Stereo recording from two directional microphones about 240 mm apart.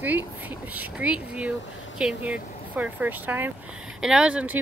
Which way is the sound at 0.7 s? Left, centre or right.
Centre.